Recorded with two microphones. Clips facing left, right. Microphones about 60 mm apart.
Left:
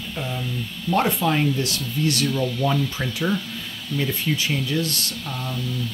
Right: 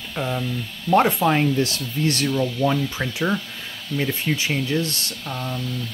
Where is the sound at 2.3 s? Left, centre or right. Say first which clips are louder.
Right 2 dB; centre.